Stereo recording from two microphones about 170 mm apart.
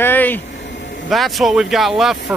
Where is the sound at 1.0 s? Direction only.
Centre (ahead or behind).